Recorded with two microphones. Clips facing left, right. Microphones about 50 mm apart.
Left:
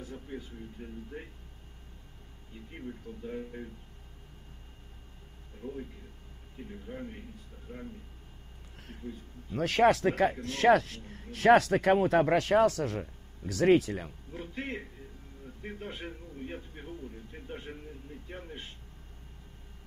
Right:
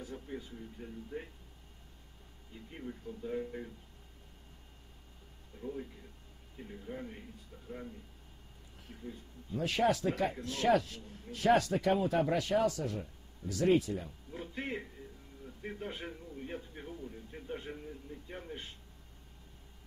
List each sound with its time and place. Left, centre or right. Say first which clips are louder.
2.8 s a man's voice: left 1 dB; centre
5.6 s speech: left 1 dB; left
6.9 s a man's voice: left 1 dB; centre
7.7 s speech: even; left
9.5 s speech: left 6 dB; left
14.3 s a man's voice: left 1 dB; left